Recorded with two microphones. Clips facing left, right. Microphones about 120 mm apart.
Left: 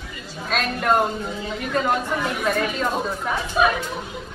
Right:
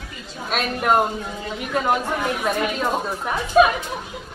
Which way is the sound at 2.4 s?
15° right (ahead or behind).